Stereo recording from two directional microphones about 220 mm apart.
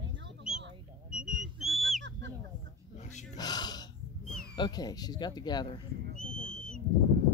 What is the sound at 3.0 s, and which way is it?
Dog, 30° left (ahead or behind).